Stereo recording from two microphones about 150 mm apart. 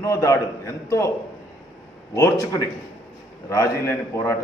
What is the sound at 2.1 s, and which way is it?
A man's voice, 20° left (ahead or behind).